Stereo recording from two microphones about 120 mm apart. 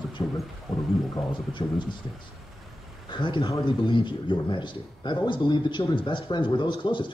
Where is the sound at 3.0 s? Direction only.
45° left (ahead or behind).